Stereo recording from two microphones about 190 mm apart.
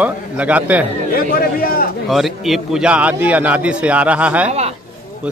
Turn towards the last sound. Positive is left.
turn(degrees=-5)  # may be behind; listen again after turning